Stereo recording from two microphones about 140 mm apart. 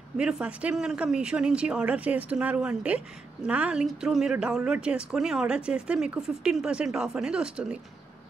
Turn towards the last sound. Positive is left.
turn(degrees=-5)  # may be behind; listen again after turning